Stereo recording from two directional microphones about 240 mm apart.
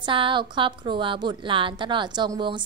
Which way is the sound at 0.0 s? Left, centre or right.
Right.